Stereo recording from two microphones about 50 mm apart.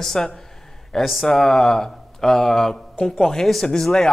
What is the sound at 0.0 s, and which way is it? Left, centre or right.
Speech, centre.